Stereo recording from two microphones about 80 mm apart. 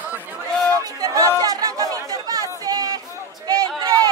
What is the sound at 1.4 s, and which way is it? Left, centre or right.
Chatter, right.